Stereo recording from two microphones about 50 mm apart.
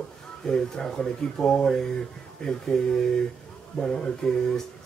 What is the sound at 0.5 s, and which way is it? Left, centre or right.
Speech, centre.